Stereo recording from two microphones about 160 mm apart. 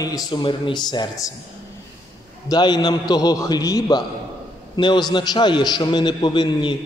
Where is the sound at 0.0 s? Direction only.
25° left (ahead or behind).